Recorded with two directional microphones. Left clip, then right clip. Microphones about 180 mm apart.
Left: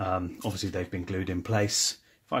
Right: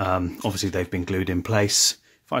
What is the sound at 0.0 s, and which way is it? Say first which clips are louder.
Speech: right 6 dB; 35° right (ahead or behind).